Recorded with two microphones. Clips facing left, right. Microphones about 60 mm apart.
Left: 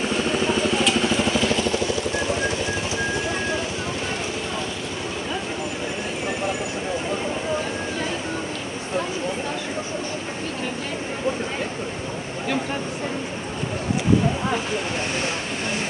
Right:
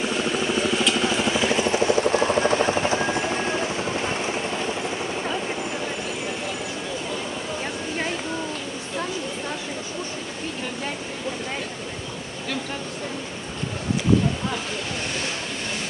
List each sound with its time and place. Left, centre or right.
0.2 s vehicle: centre
1.4 s music: right